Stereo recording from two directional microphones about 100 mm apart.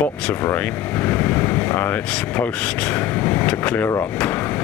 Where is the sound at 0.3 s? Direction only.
20° left (ahead or behind).